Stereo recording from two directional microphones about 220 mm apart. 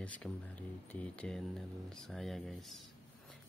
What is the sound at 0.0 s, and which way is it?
Speech, 5° left (ahead or behind).